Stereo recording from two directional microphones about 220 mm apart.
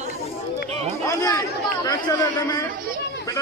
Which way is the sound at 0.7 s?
30° right (ahead or behind).